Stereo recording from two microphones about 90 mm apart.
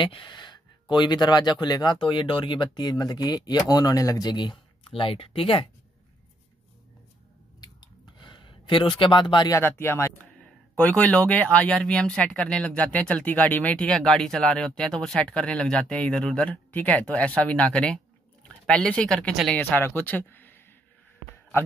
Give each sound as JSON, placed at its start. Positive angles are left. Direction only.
{"t": 0.0, "sound": "speech", "side_deg": 65}
{"t": 8.2, "sound": "a sound", "side_deg": 65}
{"t": 9.5, "sound": "speech", "side_deg": 25}
{"t": 10.8, "sound": "speech", "side_deg": 15}